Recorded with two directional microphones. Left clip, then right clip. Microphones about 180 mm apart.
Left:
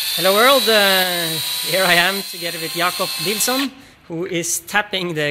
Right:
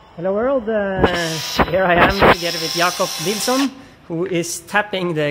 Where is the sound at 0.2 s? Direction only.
40° left (ahead or behind).